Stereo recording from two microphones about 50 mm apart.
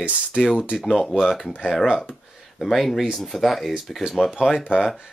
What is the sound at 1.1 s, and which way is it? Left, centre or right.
Speech, centre.